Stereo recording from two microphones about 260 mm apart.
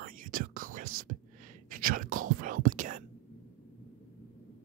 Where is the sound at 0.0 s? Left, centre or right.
Right.